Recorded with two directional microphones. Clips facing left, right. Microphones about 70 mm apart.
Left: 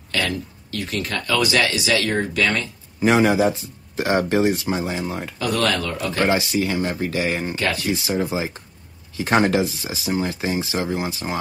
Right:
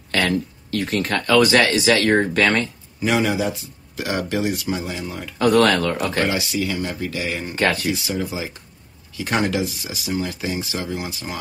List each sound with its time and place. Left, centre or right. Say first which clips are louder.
0.1 s speech: right 4 dB; right
3.0 s speech: left 4 dB; left
5.4 s speech: right 6 dB; right
6.1 s speech: left 2 dB; left
7.5 s speech: right 3 dB; right
7.9 s speech: left 3 dB; left